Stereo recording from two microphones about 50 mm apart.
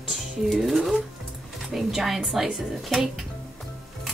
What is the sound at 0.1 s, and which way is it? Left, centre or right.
Music, centre.